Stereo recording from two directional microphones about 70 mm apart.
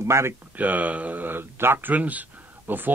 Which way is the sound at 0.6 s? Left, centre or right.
Right.